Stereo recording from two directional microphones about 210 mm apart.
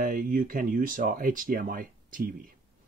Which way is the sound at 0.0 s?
40° right (ahead or behind).